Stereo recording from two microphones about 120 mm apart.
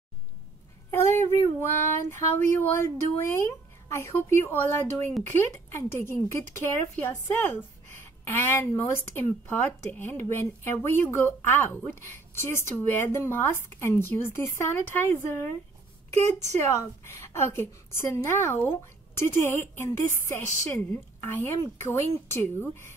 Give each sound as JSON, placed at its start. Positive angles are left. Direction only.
{"t": 0.9, "sound": "a woman's voice", "side_deg": 20}